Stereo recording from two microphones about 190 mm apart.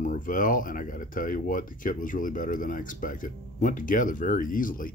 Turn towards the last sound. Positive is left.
turn(degrees=45)  # may be behind; listen again after turning